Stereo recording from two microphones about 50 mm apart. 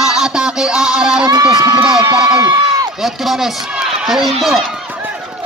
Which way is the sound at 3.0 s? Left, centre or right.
Centre.